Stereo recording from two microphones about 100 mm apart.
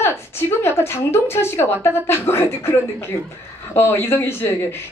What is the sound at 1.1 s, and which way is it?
A woman's voice, 25° left (ahead or behind).